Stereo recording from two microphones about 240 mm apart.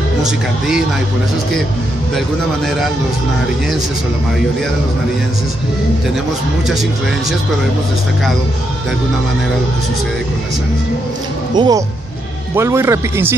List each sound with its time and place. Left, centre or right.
11.5 s speech: centre